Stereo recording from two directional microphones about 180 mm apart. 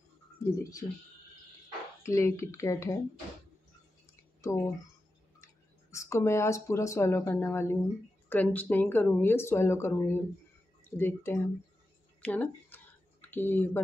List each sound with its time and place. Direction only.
0.8 s speech: 30° left (ahead or behind)
2.0 s speech: 15° left (ahead or behind)
4.4 s speech: 15° left (ahead or behind)